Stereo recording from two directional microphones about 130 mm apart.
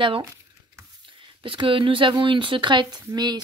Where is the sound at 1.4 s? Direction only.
40° right (ahead or behind).